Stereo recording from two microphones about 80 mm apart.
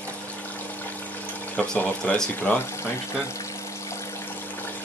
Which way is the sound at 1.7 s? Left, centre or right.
Left.